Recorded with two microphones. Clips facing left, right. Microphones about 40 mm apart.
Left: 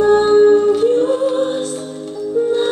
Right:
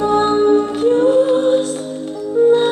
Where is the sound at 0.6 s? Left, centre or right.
Right.